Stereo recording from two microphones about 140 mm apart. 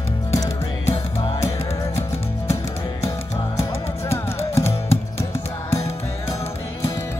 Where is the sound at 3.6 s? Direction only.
20° left (ahead or behind).